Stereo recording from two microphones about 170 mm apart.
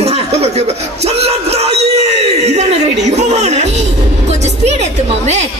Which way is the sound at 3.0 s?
40° right (ahead or behind).